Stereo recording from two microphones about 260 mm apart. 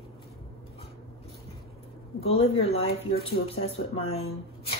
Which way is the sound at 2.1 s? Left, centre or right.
Left.